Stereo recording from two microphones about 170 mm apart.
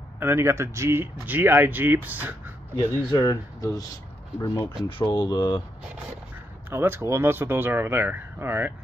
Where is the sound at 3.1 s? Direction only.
20° left (ahead or behind).